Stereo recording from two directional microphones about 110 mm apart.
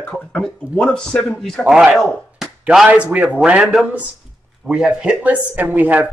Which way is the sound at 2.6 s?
10° right (ahead or behind).